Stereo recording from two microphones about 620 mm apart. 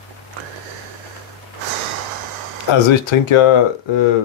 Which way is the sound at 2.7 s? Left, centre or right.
Left.